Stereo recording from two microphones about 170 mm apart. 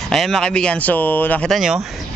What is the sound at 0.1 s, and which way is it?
A man's voice, 5° left (ahead or behind).